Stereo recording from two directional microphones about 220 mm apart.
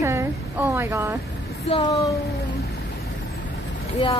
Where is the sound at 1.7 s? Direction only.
15° left (ahead or behind).